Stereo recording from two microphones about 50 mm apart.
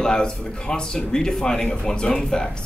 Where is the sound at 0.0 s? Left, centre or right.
Centre.